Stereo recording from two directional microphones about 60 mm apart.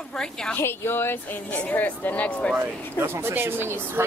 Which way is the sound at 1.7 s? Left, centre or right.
Left.